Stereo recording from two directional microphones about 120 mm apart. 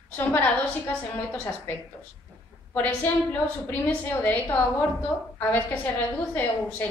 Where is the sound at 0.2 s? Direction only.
15° left (ahead or behind).